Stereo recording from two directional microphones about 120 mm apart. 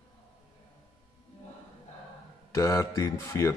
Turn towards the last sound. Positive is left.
turn(degrees=25)  # may be behind; listen again after turning